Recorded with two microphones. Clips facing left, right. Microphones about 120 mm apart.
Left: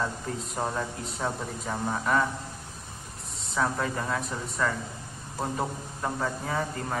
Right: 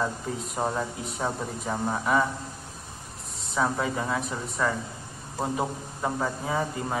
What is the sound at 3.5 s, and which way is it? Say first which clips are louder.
A man's voice: right 2 dB; 5° right (ahead or behind).